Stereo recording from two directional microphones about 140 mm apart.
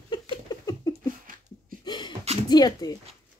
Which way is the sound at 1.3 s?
80° right.